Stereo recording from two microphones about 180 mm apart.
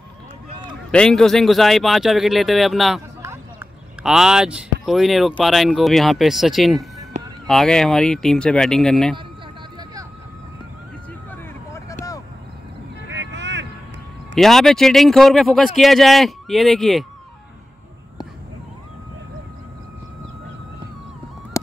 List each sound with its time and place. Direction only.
0.9 s speech: 5° left (ahead or behind)
3.2 s a sound: 15° right (ahead or behind)
4.0 s speech: 5° right (ahead or behind)
11.2 s vehicle: 15° left (ahead or behind)
13.0 s vehicle: 80° right
14.3 s speech: centre (ahead or behind)